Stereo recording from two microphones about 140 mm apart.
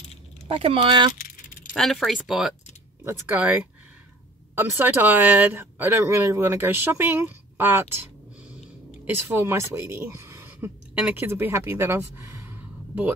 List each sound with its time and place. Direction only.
0.5 s speech: 45° right (ahead or behind)
1.1 s keys jangling: 80° left
1.7 s speech: centre (ahead or behind)
3.0 s speech: 15° right (ahead or behind)
4.6 s speech: 15° right (ahead or behind)